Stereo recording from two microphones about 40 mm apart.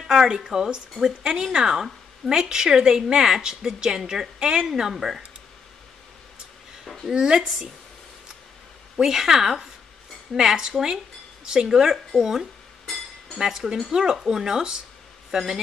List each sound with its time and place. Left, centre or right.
0.1 s a woman's voice: centre
4.9 s speech: centre
7.1 s a woman's voice: centre
8.9 s a woman's voice: centre
10.3 s speech: centre
10.7 s a woman's voice: centre